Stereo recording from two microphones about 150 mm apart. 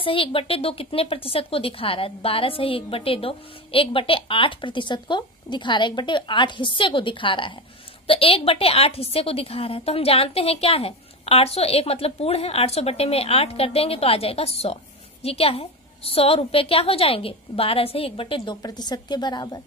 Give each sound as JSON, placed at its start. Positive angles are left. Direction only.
{"t": 0.0, "sound": "speech", "side_deg": 35}